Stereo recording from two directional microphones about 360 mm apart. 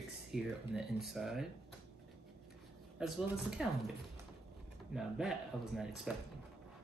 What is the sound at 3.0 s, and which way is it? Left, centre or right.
Speech, centre.